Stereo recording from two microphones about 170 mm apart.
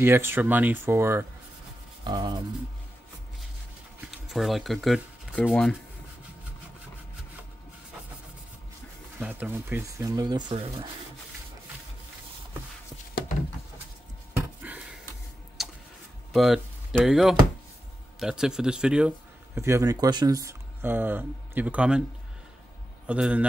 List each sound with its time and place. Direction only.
0.0 s speech: 15° right (ahead or behind)
2.0 s speech: 25° right (ahead or behind)
4.3 s speech: centre (ahead or behind)
9.2 s speech: 10° right (ahead or behind); by 10.9 s 30° right (ahead or behind)
14.6 s a sound: 10° right (ahead or behind)
15.6 s vehicle: centre (ahead or behind)
16.3 s speech: centre (ahead or behind)
23.0 s a man's voice: 5° right (ahead or behind)